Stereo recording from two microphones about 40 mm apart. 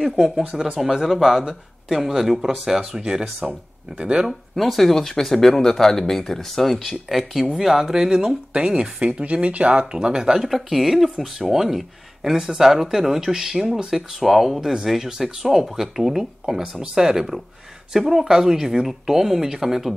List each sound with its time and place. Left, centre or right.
0.0 s speech: centre
0.7 s speech: centre
3.0 s speech: centre
4.3 s speech: centre
14.6 s speech: centre